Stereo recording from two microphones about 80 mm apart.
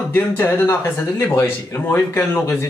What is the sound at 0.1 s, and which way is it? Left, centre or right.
Speech, left.